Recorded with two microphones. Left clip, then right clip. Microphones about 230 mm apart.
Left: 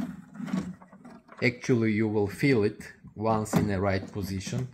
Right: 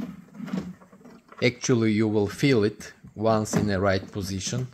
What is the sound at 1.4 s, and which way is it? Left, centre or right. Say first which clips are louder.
Speech: right 3 dB; right.